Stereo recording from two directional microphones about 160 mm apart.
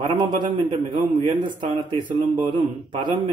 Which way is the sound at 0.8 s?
30° right (ahead or behind).